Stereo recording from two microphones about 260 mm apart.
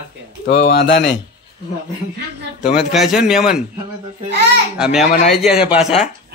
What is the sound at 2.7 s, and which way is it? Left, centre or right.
Speech, centre.